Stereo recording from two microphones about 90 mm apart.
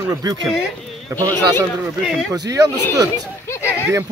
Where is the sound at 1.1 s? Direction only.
30° right (ahead or behind).